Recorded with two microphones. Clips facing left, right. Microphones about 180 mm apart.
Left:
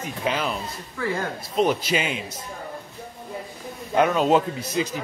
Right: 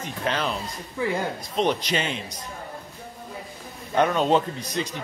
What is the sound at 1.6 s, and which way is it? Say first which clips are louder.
Speech: left 2 dB; 5° left (ahead or behind).